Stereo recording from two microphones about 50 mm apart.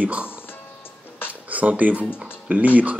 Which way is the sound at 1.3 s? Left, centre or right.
Right.